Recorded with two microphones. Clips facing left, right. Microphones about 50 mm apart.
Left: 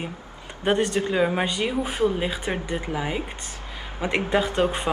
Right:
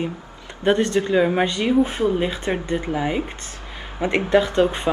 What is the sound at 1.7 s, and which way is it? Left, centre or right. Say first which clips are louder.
Speech: right 6 dB; right.